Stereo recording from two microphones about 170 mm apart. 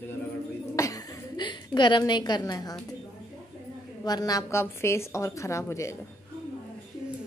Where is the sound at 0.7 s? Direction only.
20° left (ahead or behind).